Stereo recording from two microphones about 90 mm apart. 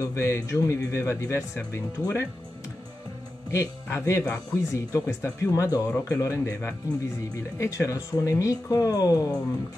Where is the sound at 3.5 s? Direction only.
30° left (ahead or behind).